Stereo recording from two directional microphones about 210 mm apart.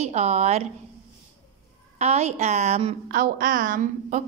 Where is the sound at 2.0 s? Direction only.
30° right (ahead or behind).